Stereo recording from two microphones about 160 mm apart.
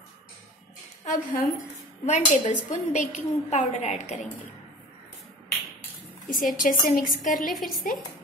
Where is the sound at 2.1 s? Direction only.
50° left (ahead or behind).